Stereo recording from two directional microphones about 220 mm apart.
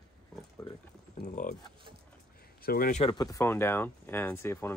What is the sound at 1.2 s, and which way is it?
Speech, 35° left (ahead or behind).